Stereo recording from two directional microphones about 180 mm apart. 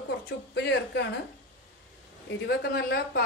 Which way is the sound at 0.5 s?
70° left (ahead or behind).